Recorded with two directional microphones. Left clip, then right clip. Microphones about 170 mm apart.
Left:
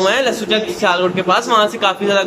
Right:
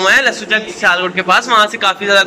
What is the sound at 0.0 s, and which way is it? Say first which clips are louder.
A man's voice: right 4 dB; 15° left (ahead or behind).